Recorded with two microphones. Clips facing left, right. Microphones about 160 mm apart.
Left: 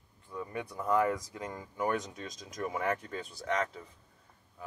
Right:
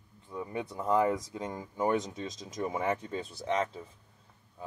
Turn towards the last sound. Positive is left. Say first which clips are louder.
# right 2 dB
turn(degrees=-25)  # may be behind; listen again after turning